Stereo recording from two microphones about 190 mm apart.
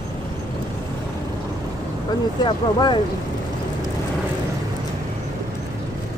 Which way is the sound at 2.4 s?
25° left (ahead or behind).